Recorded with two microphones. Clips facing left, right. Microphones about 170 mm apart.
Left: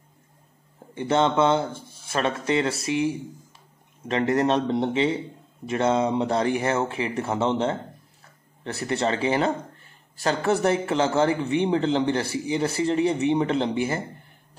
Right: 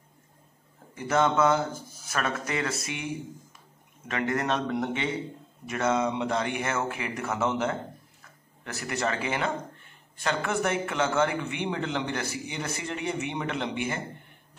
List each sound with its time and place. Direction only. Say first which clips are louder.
0.9 s a man's voice: left 3 dB; 30° left (ahead or behind)
4.1 s a man's voice: left 6 dB; 30° left (ahead or behind)